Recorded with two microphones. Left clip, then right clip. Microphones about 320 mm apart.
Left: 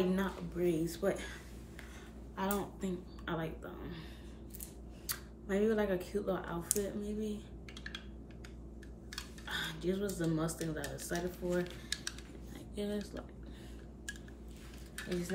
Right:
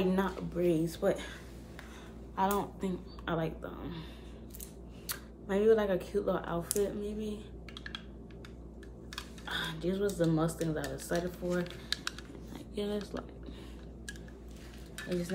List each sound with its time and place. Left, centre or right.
0.1 s speech: centre
2.3 s speech: centre
5.0 s speech: centre
9.1 s speech: centre
11.5 s typing: centre
12.5 s speech: centre
15.0 s speech: centre